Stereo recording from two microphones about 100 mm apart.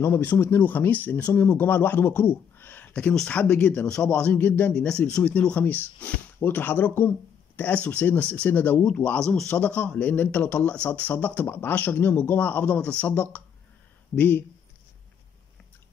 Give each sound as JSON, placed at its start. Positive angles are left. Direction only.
{"t": 0.0, "sound": "speech", "side_deg": 20}